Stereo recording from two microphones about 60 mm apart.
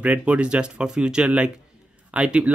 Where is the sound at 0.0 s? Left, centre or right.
Right.